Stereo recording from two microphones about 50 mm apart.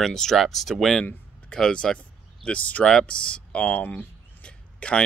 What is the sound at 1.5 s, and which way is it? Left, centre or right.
Speech, centre.